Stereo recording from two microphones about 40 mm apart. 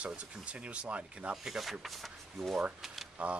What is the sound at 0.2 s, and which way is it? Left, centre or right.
Speech, right.